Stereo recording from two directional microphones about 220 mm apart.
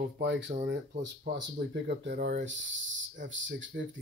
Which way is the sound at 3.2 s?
60° right (ahead or behind).